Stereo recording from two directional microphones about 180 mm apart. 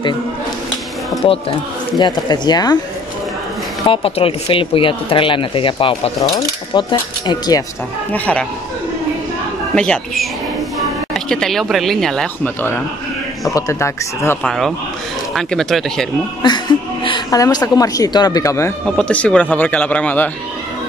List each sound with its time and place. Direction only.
2.0 s speech: 25° left (ahead or behind)
3.8 s speech: 30° left (ahead or behind)
8.1 s speech: 10° left (ahead or behind)
9.8 s speech: 5° left (ahead or behind)
14.4 s speech: centre (ahead or behind)
16.4 s speech: 25° left (ahead or behind)
18.9 s speech: 5° left (ahead or behind)